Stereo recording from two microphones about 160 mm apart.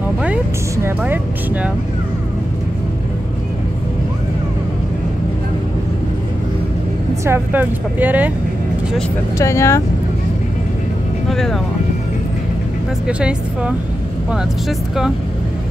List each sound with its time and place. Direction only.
0.8 s speech: 10° right (ahead or behind)
7.2 s speech: 15° right (ahead or behind)
9.4 s speech: 20° left (ahead or behind)
11.2 s a woman's voice: centre (ahead or behind)
13.0 s a woman's voice: 5° right (ahead or behind)